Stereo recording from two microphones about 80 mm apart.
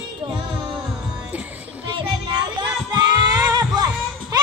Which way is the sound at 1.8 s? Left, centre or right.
Right.